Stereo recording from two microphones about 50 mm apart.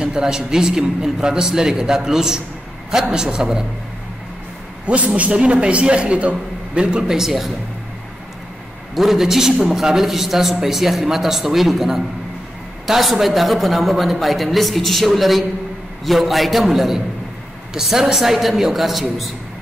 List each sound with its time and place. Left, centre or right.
0.0 s a man's voice: centre
4.8 s a man's voice: right
7.1 s a man's voice: centre
8.9 s a man's voice: centre